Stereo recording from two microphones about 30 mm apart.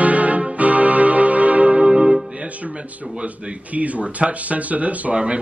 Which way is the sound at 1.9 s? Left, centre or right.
Right.